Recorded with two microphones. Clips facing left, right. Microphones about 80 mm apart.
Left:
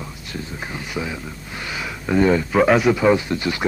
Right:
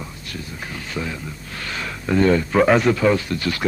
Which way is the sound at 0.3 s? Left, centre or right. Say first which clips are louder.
Left 3 dB; centre.